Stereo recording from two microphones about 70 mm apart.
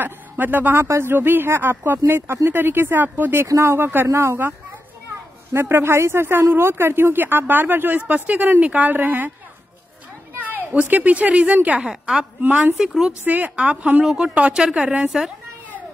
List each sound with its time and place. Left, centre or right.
0.0 s speech: right
0.8 s speech: right
3.4 s a woman's voice: right
10.7 s a woman's voice: right
11.8 s speech: centre
12.4 s a woman's voice: right
12.7 s speech: centre
13.2 s a woman's voice: right; by 15.3 s centre